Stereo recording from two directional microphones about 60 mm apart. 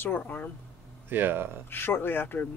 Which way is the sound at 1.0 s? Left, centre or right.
Right.